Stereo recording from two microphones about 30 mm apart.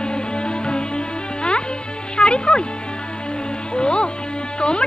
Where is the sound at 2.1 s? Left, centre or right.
Left.